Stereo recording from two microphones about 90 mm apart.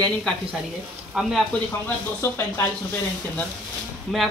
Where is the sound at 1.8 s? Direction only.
25° left (ahead or behind).